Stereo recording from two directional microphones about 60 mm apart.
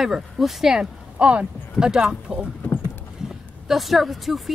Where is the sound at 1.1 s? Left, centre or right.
Right.